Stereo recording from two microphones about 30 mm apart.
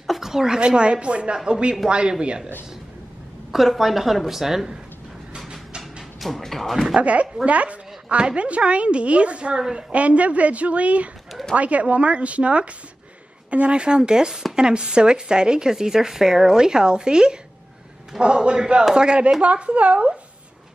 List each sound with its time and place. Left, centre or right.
0.2 s speech: centre
0.6 s speech: right
3.5 s a woman's voice: centre
6.1 s music: centre
6.4 s speech: centre
7.0 s speech: right
8.2 s speech: right
8.5 s speech: right
9.6 s speech: right
9.9 s speech: right
19.4 s speech: right